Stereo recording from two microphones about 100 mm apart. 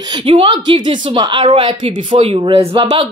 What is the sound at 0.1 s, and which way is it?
A woman's voice, 60° right (ahead or behind).